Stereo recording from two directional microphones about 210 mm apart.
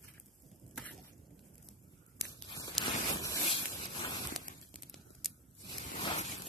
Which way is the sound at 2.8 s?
15° left (ahead or behind).